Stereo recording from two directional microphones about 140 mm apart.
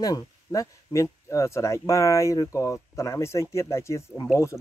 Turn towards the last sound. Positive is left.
turn(degrees=20)  # may be behind; listen again after turning